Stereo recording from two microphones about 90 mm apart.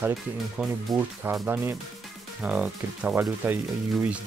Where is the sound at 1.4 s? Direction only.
20° right (ahead or behind).